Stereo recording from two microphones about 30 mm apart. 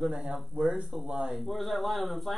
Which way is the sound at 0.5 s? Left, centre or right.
Right.